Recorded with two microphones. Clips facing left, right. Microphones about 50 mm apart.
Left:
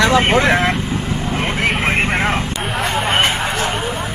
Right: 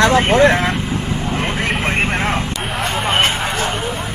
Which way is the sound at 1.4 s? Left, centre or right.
Centre.